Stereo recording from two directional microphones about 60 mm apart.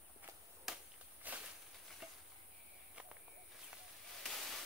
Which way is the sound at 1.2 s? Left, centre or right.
Right.